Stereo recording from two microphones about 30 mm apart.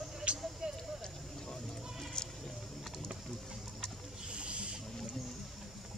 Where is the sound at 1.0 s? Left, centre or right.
Centre.